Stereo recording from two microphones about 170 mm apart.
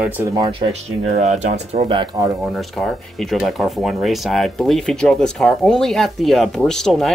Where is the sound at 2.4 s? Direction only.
Centre (ahead or behind).